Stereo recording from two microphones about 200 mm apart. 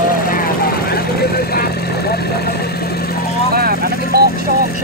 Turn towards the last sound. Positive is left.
turn(degrees=-50)  # may be behind; listen again after turning